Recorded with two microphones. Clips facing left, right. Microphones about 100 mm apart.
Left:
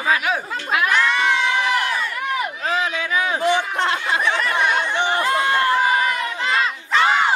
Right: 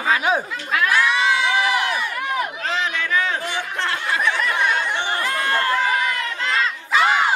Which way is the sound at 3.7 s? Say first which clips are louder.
Left 2 dB; 20° left (ahead or behind).